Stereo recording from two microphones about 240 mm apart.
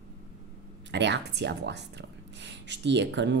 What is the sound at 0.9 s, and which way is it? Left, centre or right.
Speech, right.